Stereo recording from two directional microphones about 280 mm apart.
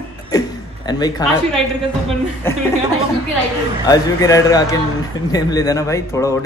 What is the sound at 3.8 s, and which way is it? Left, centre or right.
Speech, centre.